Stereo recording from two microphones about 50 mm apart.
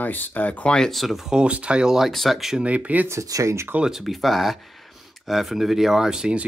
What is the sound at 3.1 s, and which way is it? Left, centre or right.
Speech, right.